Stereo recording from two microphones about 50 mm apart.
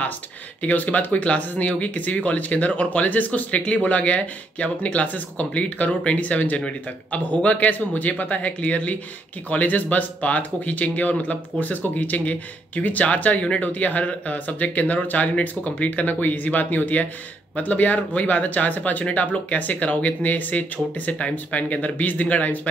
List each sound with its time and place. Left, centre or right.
0.6 s speech: left